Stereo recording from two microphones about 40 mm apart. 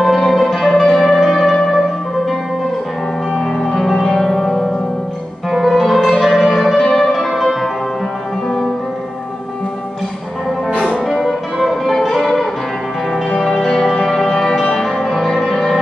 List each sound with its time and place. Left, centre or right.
0.2 s music: centre
0.9 s zither: centre
1.2 s music: centre
3.6 s music: centre
11.1 s music: centre
14.2 s music: left